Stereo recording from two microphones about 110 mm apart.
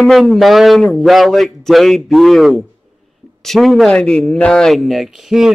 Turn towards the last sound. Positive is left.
turn(degrees=-5)  # may be behind; listen again after turning